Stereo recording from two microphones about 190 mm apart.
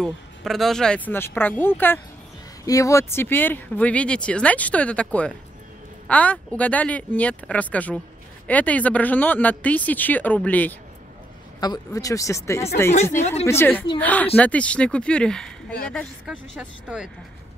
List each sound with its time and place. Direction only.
0.0 s speech: centre (ahead or behind)
11.6 s speech: 20° left (ahead or behind)
13.2 s speech: 35° left (ahead or behind)
13.5 s speech: 10° left (ahead or behind); by 17.1 s 5° right (ahead or behind)